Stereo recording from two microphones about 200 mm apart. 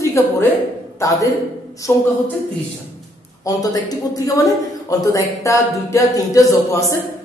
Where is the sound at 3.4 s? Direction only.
20° left (ahead or behind).